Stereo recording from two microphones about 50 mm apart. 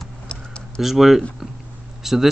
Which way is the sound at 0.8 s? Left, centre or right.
Centre.